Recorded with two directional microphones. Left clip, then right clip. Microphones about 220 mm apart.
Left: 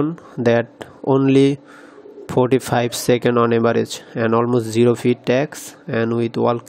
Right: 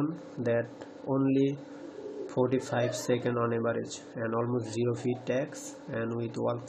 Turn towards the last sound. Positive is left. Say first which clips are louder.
# left 14 dB
turn(degrees=50)  # may be behind; listen again after turning